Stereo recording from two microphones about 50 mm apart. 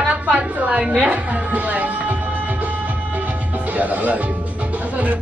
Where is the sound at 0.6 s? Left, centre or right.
Right.